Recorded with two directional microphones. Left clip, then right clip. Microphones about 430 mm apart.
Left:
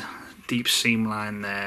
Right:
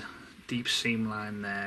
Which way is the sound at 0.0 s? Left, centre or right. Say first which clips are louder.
Left 8 dB; centre.